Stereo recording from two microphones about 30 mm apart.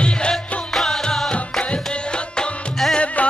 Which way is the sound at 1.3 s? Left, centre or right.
Left.